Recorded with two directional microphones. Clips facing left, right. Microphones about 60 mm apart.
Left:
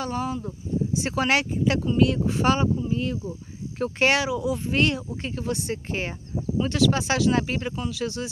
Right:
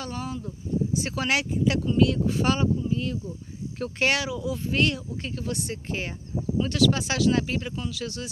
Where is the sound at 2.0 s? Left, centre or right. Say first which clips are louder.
Even; left.